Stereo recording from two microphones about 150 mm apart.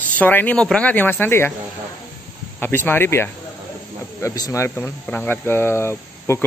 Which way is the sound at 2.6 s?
15° left (ahead or behind).